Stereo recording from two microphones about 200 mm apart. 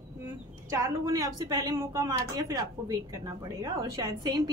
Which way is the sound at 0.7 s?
15° right (ahead or behind).